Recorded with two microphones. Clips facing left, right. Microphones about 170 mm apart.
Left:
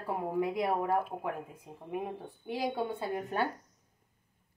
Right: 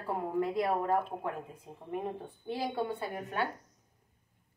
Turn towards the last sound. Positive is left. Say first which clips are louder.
# left 2 dB
turn(degrees=35)  # may be behind; listen again after turning